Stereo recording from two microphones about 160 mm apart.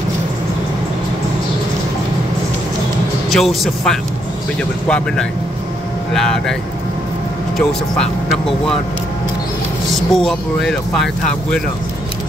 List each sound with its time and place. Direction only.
3.3 s speech: centre (ahead or behind)
7.5 s speech: 5° left (ahead or behind)
9.9 s speech: centre (ahead or behind)